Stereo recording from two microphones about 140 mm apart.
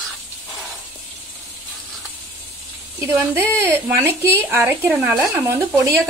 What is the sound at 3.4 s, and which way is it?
Speech, 15° right (ahead or behind).